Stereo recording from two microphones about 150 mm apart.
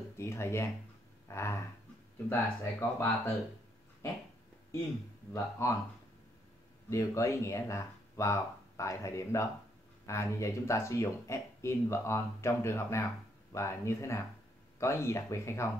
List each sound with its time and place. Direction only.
0.2 s speech: 20° left (ahead or behind)
5.3 s speech: 20° left (ahead or behind)
6.9 s speech: 20° left (ahead or behind)